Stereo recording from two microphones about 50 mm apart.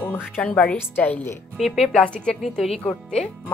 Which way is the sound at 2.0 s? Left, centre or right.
Centre.